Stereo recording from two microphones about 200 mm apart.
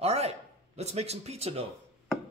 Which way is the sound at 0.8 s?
30° right (ahead or behind).